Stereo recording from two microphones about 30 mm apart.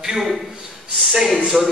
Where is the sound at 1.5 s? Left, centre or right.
Right.